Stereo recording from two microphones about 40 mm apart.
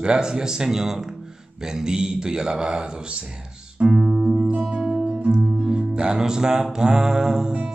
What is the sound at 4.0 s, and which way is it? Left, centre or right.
Music, centre.